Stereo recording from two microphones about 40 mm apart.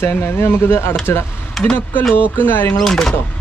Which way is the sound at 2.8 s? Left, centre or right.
Centre.